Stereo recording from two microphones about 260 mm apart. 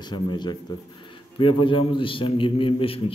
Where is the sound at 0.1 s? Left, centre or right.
Centre.